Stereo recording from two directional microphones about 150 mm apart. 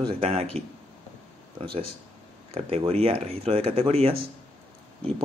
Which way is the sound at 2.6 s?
40° right (ahead or behind).